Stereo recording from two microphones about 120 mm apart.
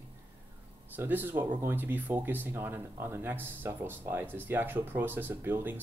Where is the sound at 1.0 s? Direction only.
15° right (ahead or behind).